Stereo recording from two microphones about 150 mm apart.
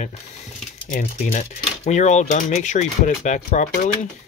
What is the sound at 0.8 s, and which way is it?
Speech, 60° left (ahead or behind).